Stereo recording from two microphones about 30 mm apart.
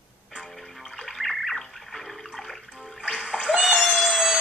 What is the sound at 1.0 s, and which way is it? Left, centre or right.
Music, centre.